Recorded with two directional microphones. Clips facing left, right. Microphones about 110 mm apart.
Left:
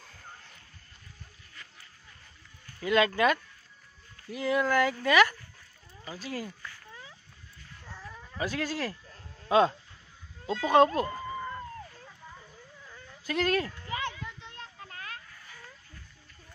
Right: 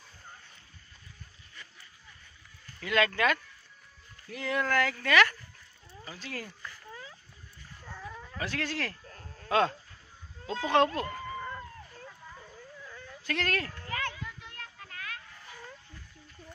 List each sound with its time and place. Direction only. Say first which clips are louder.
2.8 s speech: left 3 dB; 25° left (ahead or behind)
7.9 s dog: right 3 dB; 10° right (ahead or behind)
8.4 s speech: left 3 dB; 15° left (ahead or behind)
13.2 s a sound: left 5 dB; 15° left (ahead or behind); by 15.1 s 30° left (ahead or behind)